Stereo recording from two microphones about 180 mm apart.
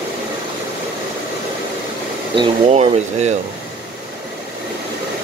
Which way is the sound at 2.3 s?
30° right (ahead or behind).